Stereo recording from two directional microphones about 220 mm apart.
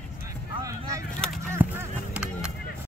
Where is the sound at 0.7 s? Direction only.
15° right (ahead or behind).